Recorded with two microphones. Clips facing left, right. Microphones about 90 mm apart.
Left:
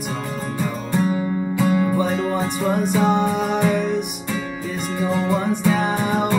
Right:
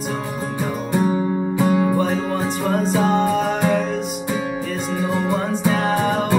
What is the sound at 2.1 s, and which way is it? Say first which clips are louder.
Music: even; 10° right (ahead or behind).